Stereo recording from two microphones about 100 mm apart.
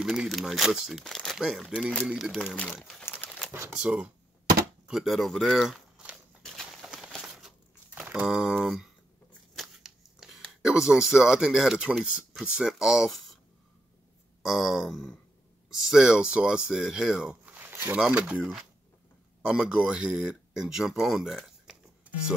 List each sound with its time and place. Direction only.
0.0 s speech: 5° right (ahead or behind)
2.5 s speech: 15° left (ahead or behind)
3.7 s speech: 10° right (ahead or behind)
6.4 s a sound: 5° left (ahead or behind)
7.2 s crushing: 5° right (ahead or behind)
8.0 s speech: 5° right (ahead or behind)
14.4 s speech: centre (ahead or behind)
17.6 s a sound: 20° right (ahead or behind)
18.0 s speech: 10° right (ahead or behind)